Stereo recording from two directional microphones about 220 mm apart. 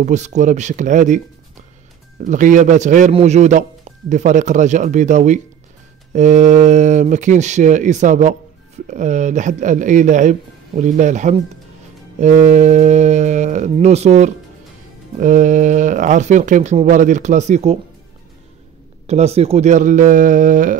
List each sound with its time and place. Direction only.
0.0 s speech: 35° right (ahead or behind)
19.0 s speech: 30° right (ahead or behind)